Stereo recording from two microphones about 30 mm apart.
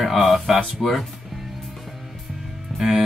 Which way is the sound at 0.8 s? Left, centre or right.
Centre.